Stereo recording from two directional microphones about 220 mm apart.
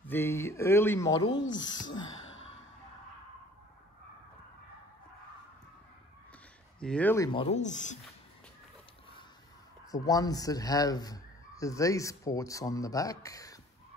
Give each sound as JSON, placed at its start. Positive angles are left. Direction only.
{"t": 0.0, "sound": "speech", "side_deg": 10}
{"t": 2.2, "sound": "sigh", "side_deg": 60}
{"t": 6.8, "sound": "speech", "side_deg": 5}
{"t": 7.2, "sound": "speech", "side_deg": 25}
{"t": 9.8, "sound": "speech", "side_deg": 15}